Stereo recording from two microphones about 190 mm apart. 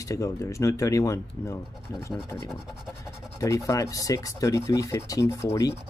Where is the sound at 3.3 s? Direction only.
15° left (ahead or behind).